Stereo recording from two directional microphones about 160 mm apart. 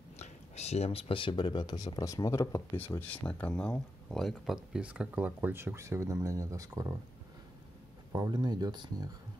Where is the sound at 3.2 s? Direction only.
10° left (ahead or behind); by 6.9 s 20° right (ahead or behind).